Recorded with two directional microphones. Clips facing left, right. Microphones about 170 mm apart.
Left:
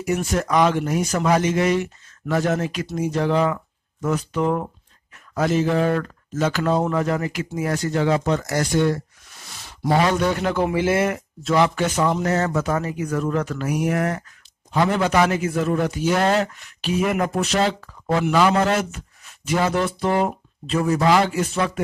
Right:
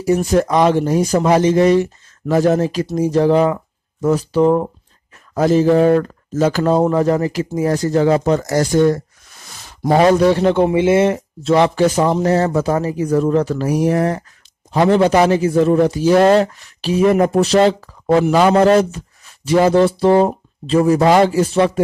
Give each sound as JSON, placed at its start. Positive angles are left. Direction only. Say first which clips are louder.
{"t": 0.0, "sound": "a man's voice", "louder": "right 8 dB", "side_deg": -35}